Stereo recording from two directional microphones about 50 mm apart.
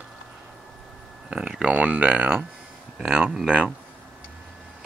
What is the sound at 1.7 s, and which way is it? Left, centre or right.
Speech, right.